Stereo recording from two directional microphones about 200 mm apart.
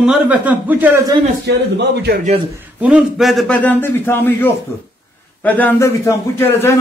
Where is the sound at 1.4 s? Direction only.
60° right (ahead or behind).